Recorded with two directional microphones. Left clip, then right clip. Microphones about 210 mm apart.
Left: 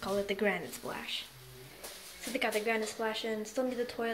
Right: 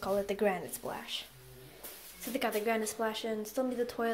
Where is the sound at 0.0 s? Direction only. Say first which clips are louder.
Right 1 dB; centre (ahead or behind).